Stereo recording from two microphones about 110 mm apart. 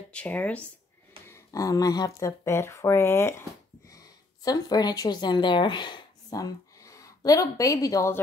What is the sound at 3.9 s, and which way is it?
A woman's voice, 35° left (ahead or behind).